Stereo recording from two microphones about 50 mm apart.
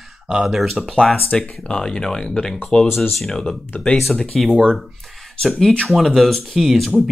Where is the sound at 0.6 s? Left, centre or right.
Centre.